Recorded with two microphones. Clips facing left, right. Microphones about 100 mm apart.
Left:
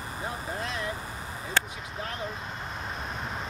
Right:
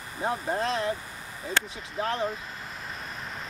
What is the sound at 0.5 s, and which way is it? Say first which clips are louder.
Speech: right 6 dB; 35° right (ahead or behind).